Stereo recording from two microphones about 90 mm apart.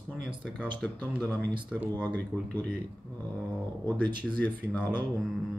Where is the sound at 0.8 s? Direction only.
20° left (ahead or behind).